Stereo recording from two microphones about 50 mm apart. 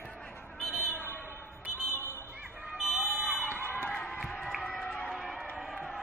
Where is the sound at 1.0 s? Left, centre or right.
Left.